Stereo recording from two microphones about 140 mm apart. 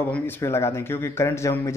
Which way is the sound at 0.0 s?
15° left (ahead or behind).